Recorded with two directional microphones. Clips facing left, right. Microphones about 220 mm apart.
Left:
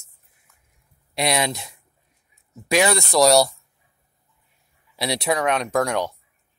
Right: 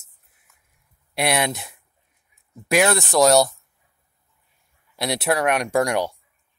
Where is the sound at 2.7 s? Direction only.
Centre (ahead or behind).